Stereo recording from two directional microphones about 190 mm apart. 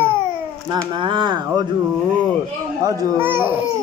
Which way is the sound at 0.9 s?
25° right (ahead or behind).